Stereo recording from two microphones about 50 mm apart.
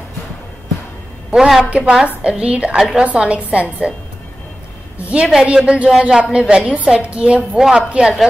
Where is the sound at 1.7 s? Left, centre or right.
Centre.